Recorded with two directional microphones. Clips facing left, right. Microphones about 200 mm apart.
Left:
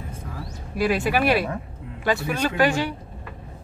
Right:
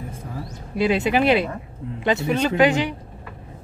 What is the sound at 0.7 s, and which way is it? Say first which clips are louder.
Speech: right 2 dB; 25° right (ahead or behind).